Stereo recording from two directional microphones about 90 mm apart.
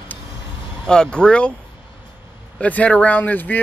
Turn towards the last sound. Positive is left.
turn(degrees=20)  # may be behind; listen again after turning